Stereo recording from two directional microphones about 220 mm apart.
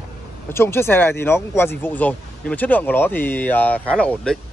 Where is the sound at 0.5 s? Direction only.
10° left (ahead or behind).